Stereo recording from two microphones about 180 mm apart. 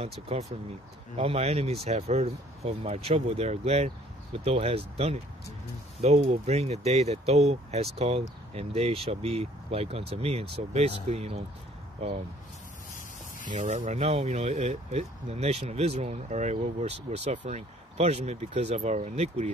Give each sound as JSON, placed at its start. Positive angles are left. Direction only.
{"t": 0.3, "sound": "speech", "side_deg": -35}
{"t": 13.5, "sound": "speech", "side_deg": -40}